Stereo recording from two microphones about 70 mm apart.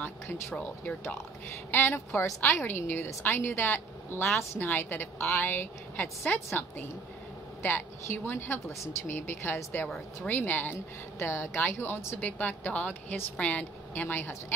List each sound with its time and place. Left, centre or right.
0.0 s a woman's voice: left
1.7 s a woman's voice: left
11.1 s a woman's voice: left
12.2 s a woman's voice: left